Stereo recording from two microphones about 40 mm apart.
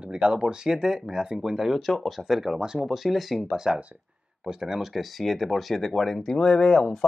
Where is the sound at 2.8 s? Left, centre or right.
Centre.